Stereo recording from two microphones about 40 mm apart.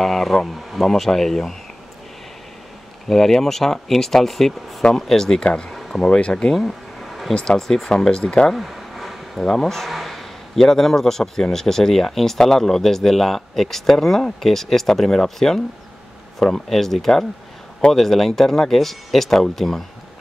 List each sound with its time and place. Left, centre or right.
0.0 s speech: centre
3.1 s speech: centre
5.4 s speech: left
5.7 s a sound: centre
6.0 s speech: left
6.5 s a sound: centre
7.4 s speech: centre
7.9 s speech: centre
8.5 s a sound: centre
9.4 s a man's voice: centre